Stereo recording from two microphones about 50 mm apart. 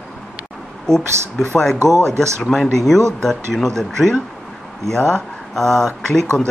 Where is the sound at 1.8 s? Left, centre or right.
Right.